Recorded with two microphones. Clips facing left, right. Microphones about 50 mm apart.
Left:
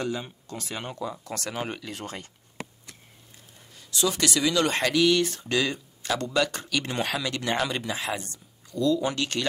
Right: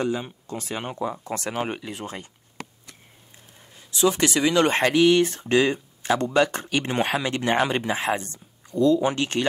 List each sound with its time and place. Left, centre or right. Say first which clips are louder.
0.0 s speech: right 4 dB; right
3.7 s speech: right 5 dB; right